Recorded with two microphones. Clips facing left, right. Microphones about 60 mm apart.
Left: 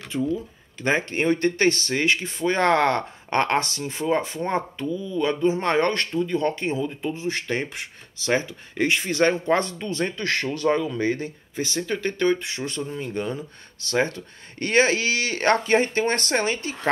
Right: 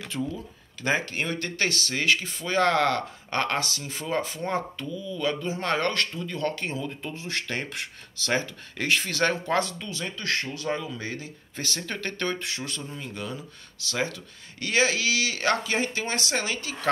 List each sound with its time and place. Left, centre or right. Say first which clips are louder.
0.1 s speech: left 5 dB; centre
0.7 s speech: left 4 dB; left
3.8 s speech: left 5 dB; left
10.4 s speech: left 8 dB; left
11.0 s speech: left 10 dB; left
11.5 s speech: left 6 dB; centre; by 16.9 s left